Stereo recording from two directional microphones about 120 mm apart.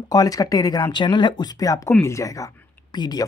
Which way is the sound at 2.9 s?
40° left (ahead or behind).